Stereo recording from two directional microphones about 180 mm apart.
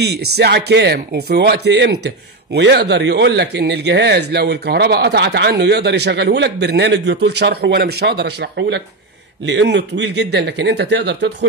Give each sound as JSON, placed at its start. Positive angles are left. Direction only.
{"t": 0.0, "sound": "a man's voice", "side_deg": -65}